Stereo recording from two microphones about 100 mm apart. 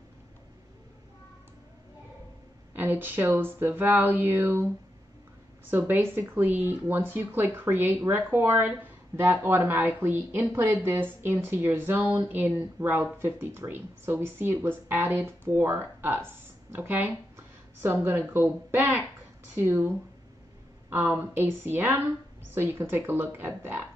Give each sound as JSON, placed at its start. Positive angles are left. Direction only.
{"t": 2.7, "sound": "speech", "side_deg": -20}
{"t": 5.7, "sound": "speech", "side_deg": -20}
{"t": 20.9, "sound": "speech", "side_deg": -20}